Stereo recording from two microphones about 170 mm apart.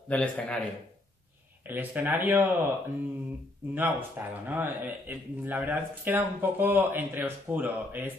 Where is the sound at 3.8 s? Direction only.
10° right (ahead or behind).